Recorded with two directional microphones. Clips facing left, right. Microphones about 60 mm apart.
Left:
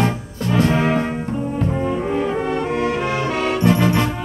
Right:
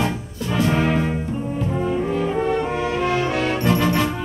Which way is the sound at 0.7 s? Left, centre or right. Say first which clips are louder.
Left 1 dB; centre.